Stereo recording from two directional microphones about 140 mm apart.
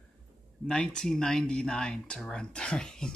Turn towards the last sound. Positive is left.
turn(degrees=5)  # may be behind; listen again after turning